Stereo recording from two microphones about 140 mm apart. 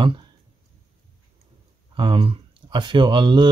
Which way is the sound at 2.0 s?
35° right (ahead or behind).